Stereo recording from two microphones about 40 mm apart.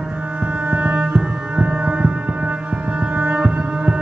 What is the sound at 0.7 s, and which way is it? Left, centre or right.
Music, right.